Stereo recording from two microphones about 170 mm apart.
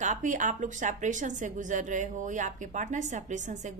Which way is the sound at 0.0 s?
45° right (ahead or behind).